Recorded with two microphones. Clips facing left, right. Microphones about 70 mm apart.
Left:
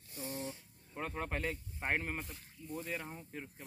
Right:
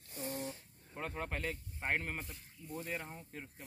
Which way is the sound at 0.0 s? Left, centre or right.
Right.